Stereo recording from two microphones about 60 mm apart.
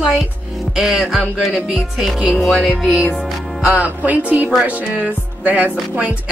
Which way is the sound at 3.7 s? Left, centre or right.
Right.